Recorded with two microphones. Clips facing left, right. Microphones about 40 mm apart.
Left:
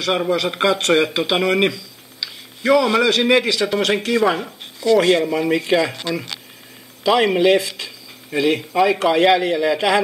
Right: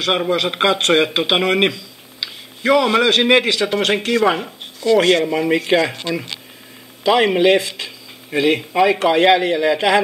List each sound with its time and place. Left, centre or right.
0.3 s a man's voice: right
4.2 s a man's voice: centre